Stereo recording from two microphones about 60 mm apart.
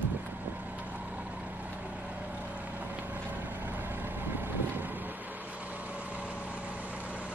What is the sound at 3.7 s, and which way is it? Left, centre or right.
Vehicle, right.